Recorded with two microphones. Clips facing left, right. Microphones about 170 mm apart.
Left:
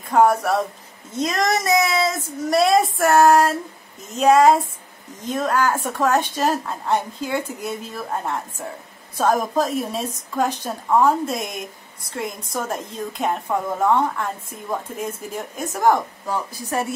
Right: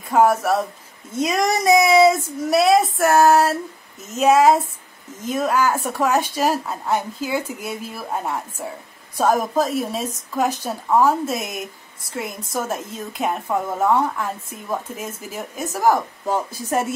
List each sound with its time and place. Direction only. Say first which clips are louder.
0.1 s a woman's voice: even; 5° right (ahead or behind)
16.3 s a woman's voice: right 4 dB; 20° right (ahead or behind)